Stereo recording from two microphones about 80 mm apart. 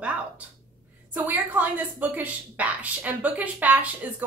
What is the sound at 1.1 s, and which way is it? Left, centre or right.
Speech, right.